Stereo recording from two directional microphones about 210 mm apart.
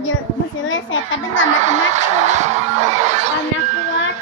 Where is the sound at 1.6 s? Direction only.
35° right (ahead or behind).